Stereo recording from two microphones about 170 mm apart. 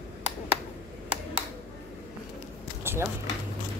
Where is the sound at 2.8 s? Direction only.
15° right (ahead or behind).